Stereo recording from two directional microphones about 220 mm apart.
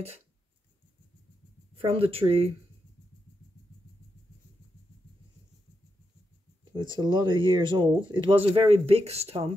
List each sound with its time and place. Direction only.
2.0 s speech: 25° right (ahead or behind)
6.7 s speech: 20° right (ahead or behind)